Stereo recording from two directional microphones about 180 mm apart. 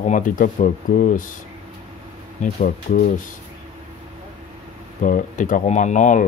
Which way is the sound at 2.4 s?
45° left (ahead or behind).